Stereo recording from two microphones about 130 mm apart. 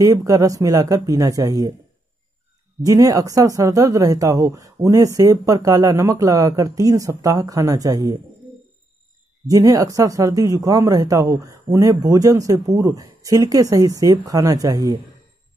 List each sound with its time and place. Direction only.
0.0 s speech: 25° right (ahead or behind)
2.8 s speech: 25° right (ahead or behind)
9.5 s speech: 25° right (ahead or behind)